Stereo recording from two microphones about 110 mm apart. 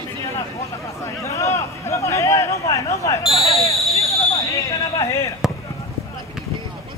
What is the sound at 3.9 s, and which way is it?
Basketball bounce, 30° left (ahead or behind).